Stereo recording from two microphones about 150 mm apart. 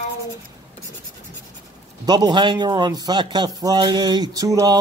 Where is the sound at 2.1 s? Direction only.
30° right (ahead or behind).